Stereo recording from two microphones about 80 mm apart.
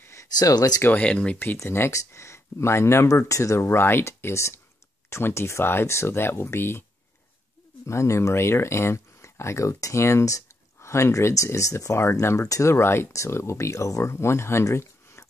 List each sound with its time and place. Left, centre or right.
0.0 s a sound: left
0.4 s speech: left
0.8 s speech: centre
1.6 s speech: left
7.8 s speech: left